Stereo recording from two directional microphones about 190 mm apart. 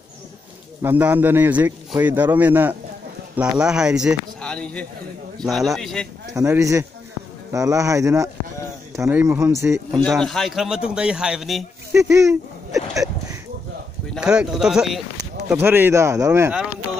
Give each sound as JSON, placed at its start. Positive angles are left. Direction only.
{"t": 0.8, "sound": "a man's voice", "side_deg": -10}
{"t": 6.3, "sound": "a man's voice", "side_deg": -15}
{"t": 10.0, "sound": "a man's voice", "side_deg": 0}
{"t": 11.9, "sound": "a man's voice", "side_deg": -15}
{"t": 12.7, "sound": "a sound", "side_deg": 0}
{"t": 14.1, "sound": "a man's voice", "side_deg": -5}